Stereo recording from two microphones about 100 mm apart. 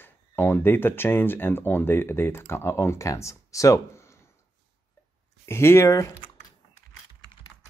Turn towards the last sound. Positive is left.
turn(degrees=30)  # may be behind; listen again after turning